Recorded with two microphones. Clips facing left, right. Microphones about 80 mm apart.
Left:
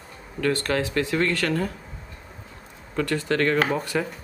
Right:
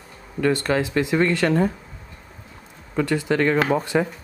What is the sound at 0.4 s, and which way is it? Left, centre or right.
Speech, centre.